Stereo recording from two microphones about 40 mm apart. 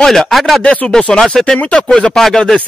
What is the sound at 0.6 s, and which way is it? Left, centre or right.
Speech, left.